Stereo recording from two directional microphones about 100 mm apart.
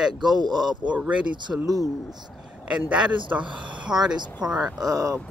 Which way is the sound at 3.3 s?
50° right (ahead or behind).